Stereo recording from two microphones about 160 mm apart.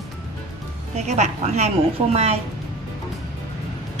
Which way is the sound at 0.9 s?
45° right (ahead or behind).